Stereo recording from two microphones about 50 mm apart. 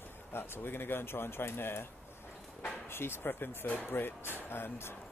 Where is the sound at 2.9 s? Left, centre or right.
Left.